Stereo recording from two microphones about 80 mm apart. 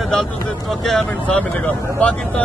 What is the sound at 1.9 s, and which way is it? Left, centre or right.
Speech, centre.